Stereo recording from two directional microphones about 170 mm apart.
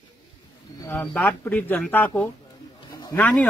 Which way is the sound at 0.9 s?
10° left (ahead or behind).